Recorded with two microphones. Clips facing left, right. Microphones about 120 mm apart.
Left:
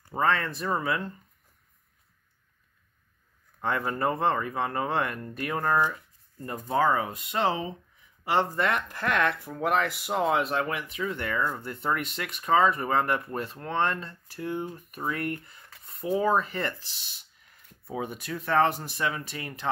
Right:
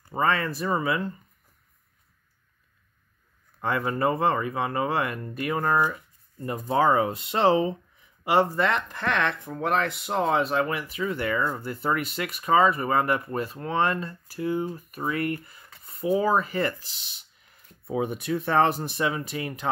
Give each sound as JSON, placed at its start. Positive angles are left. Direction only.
{"t": 0.1, "sound": "speech", "side_deg": -5}
{"t": 3.6, "sound": "speech", "side_deg": -5}
{"t": 6.9, "sound": "speech", "side_deg": -25}
{"t": 8.5, "sound": "speech", "side_deg": 5}
{"t": 17.8, "sound": "speech", "side_deg": -20}